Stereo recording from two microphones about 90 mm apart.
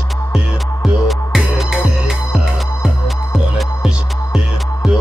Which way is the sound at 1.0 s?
Centre (ahead or behind).